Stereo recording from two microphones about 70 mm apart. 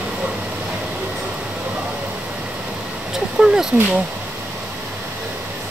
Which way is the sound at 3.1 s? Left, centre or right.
Centre.